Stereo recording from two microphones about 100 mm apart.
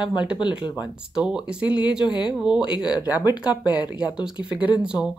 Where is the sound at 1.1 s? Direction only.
10° right (ahead or behind).